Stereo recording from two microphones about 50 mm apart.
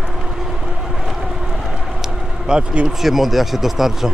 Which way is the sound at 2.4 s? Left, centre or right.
Centre.